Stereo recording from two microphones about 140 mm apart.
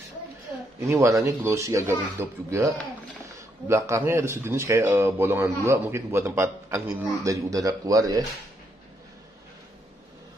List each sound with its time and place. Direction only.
0.8 s speech: 20° right (ahead or behind)